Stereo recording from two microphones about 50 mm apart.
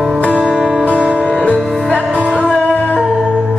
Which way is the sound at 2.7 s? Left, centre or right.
Left.